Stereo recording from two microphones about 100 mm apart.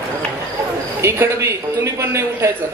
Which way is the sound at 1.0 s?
25° right (ahead or behind).